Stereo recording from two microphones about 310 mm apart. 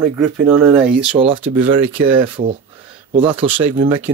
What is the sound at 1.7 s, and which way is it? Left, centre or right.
Speech, right.